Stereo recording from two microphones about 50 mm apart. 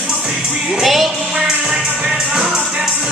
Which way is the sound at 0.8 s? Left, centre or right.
Centre.